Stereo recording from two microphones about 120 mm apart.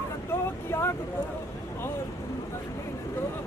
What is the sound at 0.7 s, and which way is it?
Speech, 20° left (ahead or behind).